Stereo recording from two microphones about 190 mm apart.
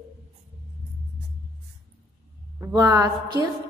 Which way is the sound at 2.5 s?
20° right (ahead or behind).